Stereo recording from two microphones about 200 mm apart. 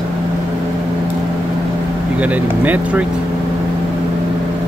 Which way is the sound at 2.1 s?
5° right (ahead or behind).